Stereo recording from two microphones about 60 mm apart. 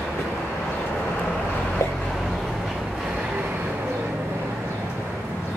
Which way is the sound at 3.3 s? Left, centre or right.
Right.